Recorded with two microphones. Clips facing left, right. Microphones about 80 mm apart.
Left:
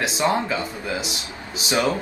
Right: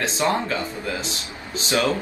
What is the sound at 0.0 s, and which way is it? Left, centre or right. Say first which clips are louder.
Speech: left 1 dB; centre.